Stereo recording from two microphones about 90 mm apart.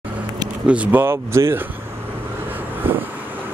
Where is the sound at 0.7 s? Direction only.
15° right (ahead or behind).